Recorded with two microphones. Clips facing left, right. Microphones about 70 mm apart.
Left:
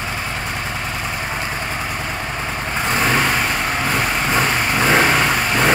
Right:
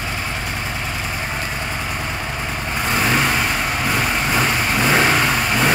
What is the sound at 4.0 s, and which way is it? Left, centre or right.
Vehicle, centre.